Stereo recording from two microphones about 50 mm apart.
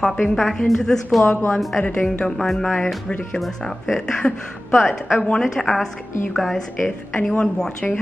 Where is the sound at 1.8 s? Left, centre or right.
Left.